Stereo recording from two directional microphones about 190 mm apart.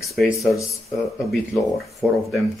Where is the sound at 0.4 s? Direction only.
15° left (ahead or behind).